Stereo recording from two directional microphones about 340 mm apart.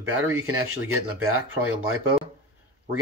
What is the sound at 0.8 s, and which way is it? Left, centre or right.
Speech, right.